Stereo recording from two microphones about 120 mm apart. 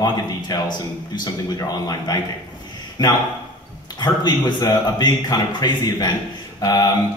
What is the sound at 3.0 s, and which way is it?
A man's voice, 35° left (ahead or behind).